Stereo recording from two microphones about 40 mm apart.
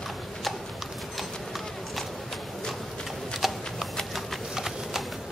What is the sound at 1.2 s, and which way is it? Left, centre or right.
Clip-clop, centre.